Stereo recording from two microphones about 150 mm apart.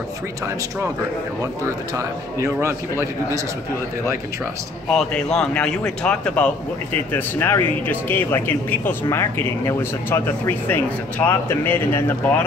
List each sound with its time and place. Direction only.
1.4 s a man's voice: 20° right (ahead or behind)
4.9 s speech: 5° left (ahead or behind)